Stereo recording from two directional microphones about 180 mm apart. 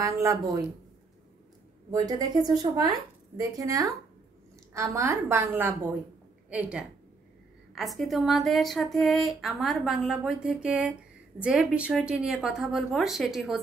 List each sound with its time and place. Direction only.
0.0 s a woman's voice: 20° right (ahead or behind)
1.9 s a woman's voice: 20° right (ahead or behind)
7.7 s a woman's voice: centre (ahead or behind)